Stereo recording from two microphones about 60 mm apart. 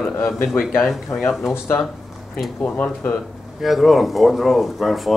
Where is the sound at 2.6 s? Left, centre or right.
Left.